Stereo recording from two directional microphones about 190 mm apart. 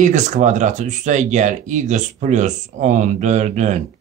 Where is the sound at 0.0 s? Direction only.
40° right (ahead or behind).